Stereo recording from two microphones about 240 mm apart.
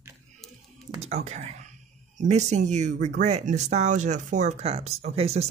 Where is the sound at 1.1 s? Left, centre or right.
Right.